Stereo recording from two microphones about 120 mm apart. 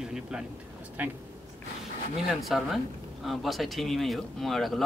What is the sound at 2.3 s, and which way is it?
Speech, centre (ahead or behind).